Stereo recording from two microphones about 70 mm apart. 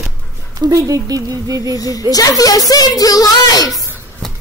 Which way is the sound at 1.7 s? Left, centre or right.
Left.